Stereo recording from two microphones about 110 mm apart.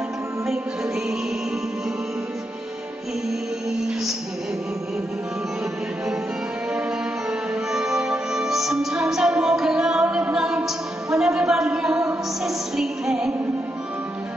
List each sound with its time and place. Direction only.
7.2 s music: 5° right (ahead or behind)